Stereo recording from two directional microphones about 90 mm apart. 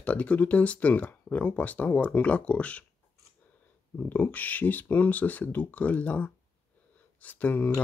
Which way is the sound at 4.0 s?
20° left (ahead or behind).